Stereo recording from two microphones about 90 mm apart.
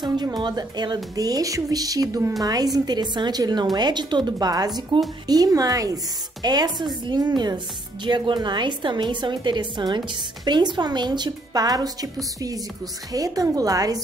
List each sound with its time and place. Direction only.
0.0 s a woman's voice: 50° right (ahead or behind)